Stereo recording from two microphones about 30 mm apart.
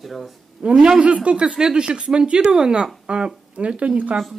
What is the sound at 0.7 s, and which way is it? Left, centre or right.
Speech, right.